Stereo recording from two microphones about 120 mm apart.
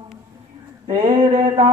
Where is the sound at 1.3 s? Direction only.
35° right (ahead or behind).